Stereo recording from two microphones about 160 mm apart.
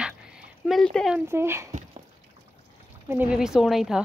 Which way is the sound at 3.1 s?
10° right (ahead or behind).